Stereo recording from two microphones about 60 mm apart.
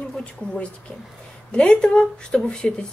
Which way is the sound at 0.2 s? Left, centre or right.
Centre.